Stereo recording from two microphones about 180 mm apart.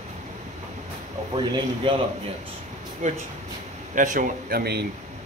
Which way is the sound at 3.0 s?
40° right (ahead or behind).